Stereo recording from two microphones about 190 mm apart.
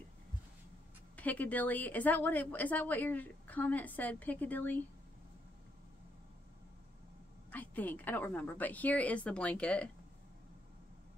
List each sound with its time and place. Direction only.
1.1 s a woman's voice: 10° left (ahead or behind)
7.5 s a woman's voice: 10° left (ahead or behind)